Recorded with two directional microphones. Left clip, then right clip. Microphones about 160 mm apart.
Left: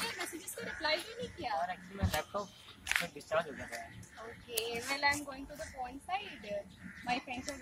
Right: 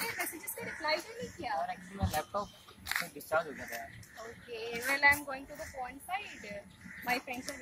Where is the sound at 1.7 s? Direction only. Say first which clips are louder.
Right 1 dB; 10° left (ahead or behind).